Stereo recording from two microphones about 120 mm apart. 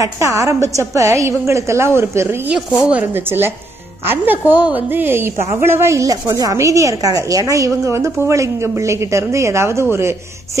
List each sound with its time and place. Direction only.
0.0 s a woman's voice: 25° right (ahead or behind)